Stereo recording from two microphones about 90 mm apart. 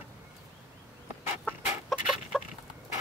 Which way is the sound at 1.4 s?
5° right (ahead or behind).